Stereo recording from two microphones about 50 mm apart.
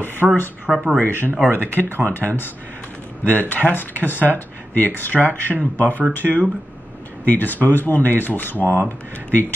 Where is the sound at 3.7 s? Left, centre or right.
Left.